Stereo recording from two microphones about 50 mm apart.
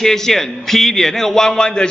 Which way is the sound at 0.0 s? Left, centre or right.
Centre.